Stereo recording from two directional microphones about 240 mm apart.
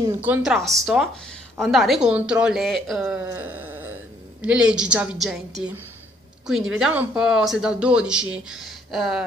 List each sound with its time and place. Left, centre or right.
0.0 s speech: centre